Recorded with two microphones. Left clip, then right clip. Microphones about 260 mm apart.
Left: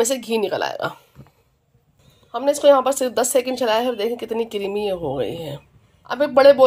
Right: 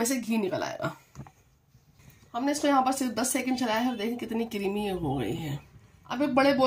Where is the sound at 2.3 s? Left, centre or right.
Left.